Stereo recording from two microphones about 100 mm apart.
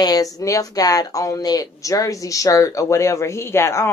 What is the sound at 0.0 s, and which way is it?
Speech, 35° left (ahead or behind).